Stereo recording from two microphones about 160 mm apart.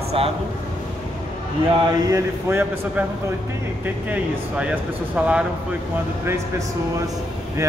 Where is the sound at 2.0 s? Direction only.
20° right (ahead or behind).